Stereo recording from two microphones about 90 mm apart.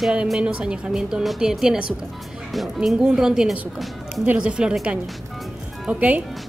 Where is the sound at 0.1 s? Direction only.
10° right (ahead or behind).